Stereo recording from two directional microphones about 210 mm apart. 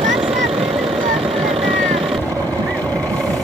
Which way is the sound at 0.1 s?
5° right (ahead or behind).